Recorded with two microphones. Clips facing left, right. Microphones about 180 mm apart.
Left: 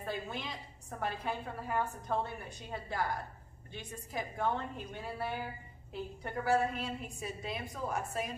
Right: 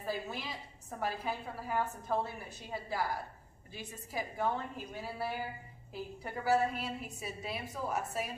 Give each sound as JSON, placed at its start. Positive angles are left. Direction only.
{"t": 0.0, "sound": "a woman's voice", "side_deg": -5}